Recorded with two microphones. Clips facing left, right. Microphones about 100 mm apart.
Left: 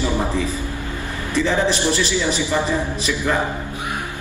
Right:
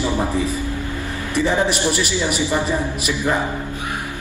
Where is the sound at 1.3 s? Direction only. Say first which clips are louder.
Even; 15° right (ahead or behind).